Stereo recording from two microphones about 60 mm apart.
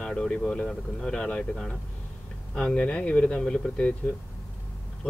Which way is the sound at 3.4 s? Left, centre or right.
Centre.